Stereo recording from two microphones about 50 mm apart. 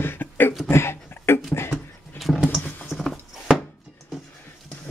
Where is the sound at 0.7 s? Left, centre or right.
Left.